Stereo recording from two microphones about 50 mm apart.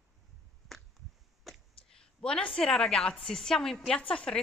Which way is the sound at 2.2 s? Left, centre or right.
Centre.